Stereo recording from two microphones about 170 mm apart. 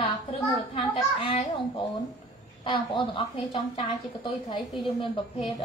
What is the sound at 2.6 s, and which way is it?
A woman's voice, 30° left (ahead or behind).